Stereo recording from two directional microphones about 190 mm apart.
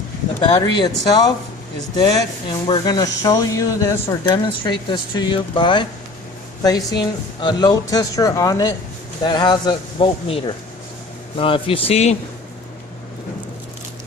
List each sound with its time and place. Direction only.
0.4 s speech: 25° left (ahead or behind)
6.9 s speech: 25° left (ahead or behind)